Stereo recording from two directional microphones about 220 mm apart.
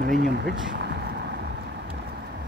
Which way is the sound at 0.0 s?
45° right (ahead or behind).